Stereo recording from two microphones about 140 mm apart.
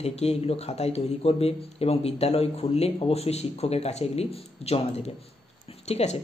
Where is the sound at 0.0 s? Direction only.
50° left (ahead or behind).